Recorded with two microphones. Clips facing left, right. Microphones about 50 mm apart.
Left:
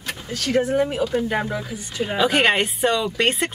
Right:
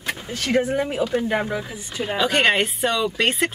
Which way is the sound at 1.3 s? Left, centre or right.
Centre.